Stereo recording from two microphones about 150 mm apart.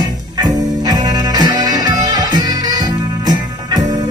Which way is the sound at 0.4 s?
25° right (ahead or behind).